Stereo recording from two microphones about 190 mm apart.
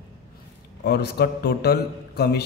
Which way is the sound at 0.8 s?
60° left (ahead or behind).